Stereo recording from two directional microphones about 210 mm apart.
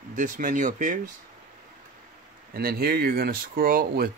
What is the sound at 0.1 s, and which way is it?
Speech, 40° right (ahead or behind).